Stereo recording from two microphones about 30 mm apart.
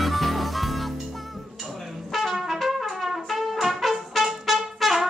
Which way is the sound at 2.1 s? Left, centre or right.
Centre.